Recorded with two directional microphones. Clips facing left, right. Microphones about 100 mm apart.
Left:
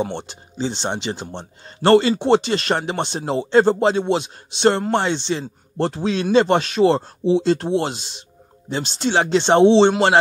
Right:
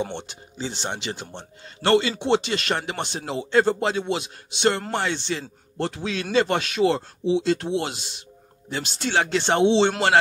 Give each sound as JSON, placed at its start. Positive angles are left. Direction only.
{"t": 0.1, "sound": "a man's voice", "side_deg": 35}